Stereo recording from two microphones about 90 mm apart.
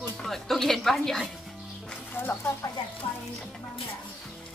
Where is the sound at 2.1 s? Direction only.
20° left (ahead or behind).